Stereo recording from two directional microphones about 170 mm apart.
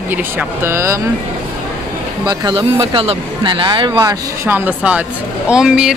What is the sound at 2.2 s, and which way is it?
Speech, 25° right (ahead or behind).